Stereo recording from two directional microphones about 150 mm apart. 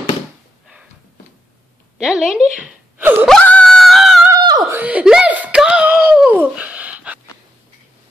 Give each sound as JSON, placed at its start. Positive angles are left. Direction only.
{"t": 2.0, "sound": "a woman's voice", "side_deg": -5}
{"t": 3.3, "sound": "singing", "side_deg": 5}
{"t": 4.3, "sound": "screaming", "side_deg": -30}
{"t": 4.7, "sound": "a sound", "side_deg": -10}